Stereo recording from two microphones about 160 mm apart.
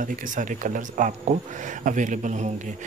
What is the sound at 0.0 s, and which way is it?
Speech, 55° right (ahead or behind).